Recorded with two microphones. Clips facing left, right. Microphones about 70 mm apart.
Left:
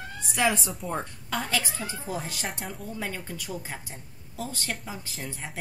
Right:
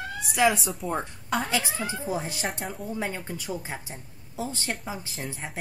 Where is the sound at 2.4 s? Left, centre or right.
Centre.